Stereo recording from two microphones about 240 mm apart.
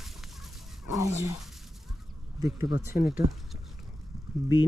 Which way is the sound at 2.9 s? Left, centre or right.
Left.